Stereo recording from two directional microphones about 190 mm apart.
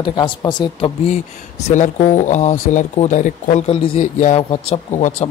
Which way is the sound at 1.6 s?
40° left (ahead or behind).